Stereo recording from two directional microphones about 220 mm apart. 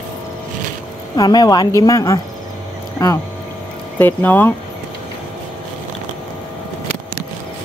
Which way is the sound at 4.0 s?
10° left (ahead or behind).